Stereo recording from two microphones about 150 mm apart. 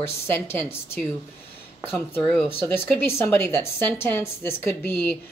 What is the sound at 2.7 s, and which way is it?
Speech, 15° left (ahead or behind).